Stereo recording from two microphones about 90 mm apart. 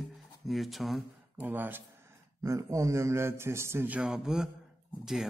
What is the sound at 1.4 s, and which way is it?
Speech, 20° right (ahead or behind).